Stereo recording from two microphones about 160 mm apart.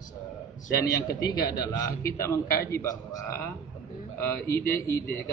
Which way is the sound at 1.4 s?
20° left (ahead or behind).